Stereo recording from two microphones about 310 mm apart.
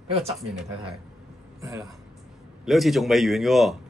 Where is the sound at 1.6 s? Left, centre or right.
Centre.